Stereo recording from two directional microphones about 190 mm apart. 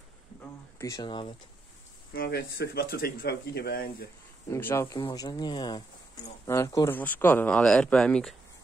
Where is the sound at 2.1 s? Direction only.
55° left (ahead or behind).